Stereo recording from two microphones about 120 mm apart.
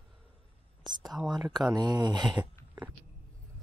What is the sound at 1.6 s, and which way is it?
Speech, 35° right (ahead or behind).